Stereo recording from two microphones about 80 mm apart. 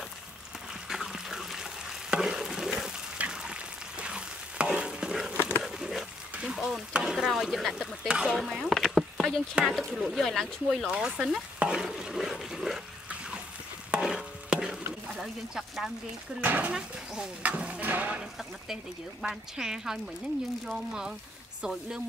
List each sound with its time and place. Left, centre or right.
0.8 s frying: centre
5.3 s a sound: right
5.6 s a sound: centre
8.1 s speech: centre
8.4 s speech: centre
10.9 s speech: centre
13.8 s stir: centre
15.0 s speech: centre
16.3 s speech: right
16.7 s speech: centre
19.2 s speech: centre